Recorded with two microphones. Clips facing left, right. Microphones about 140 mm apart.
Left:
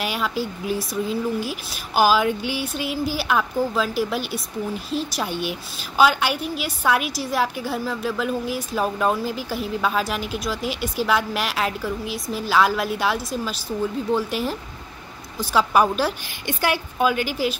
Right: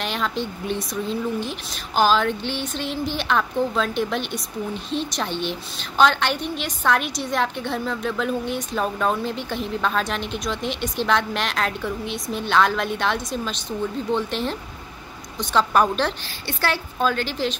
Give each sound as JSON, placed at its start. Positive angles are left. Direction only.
{"t": 0.0, "sound": "a woman's voice", "side_deg": 5}